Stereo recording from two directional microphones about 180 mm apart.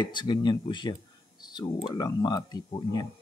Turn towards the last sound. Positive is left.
turn(degrees=25)  # may be behind; listen again after turning